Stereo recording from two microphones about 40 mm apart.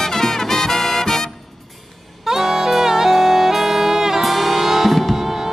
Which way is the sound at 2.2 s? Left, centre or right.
Centre.